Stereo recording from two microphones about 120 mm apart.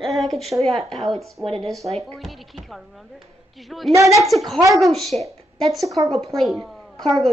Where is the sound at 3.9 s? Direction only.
25° right (ahead or behind).